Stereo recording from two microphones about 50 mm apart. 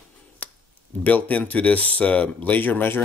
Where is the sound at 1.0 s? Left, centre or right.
Left.